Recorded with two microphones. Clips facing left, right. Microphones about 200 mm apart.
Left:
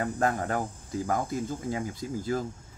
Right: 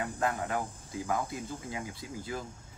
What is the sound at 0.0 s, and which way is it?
Speech, 45° left (ahead or behind).